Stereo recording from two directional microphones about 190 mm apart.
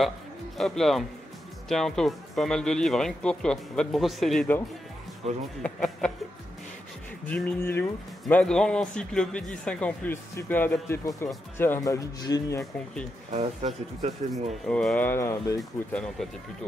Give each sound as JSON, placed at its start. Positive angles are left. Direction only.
{"t": 0.6, "sound": "speech", "side_deg": 0}
{"t": 7.2, "sound": "a man's voice", "side_deg": 10}
{"t": 13.3, "sound": "speech", "side_deg": -35}
{"t": 14.7, "sound": "a man's voice", "side_deg": 5}
{"t": 15.9, "sound": "speech", "side_deg": 5}